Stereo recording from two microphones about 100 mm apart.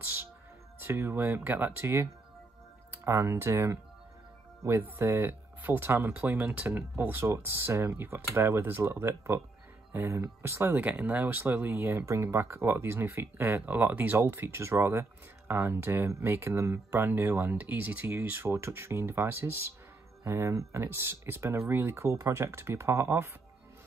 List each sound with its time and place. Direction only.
0.8 s speech: 25° right (ahead or behind)